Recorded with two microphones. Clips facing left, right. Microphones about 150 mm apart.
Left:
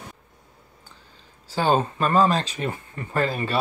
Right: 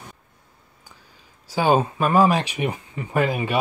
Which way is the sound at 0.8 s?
10° right (ahead or behind).